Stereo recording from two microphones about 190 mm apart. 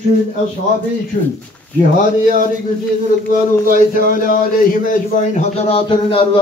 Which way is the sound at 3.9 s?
45° left (ahead or behind).